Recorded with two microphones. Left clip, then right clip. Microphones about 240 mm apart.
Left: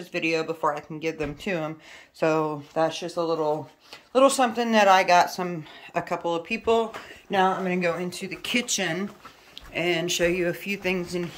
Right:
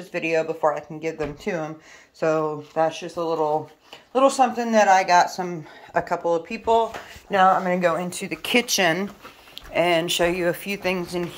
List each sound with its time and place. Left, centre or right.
0.1 s speech: centre
2.1 s speech: centre
5.0 s speech: left
5.3 s speech: centre